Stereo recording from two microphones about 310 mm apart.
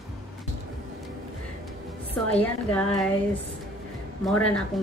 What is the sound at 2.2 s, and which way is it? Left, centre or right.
Speech, centre.